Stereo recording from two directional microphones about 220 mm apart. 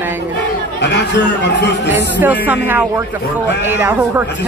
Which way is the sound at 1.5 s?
50° left (ahead or behind).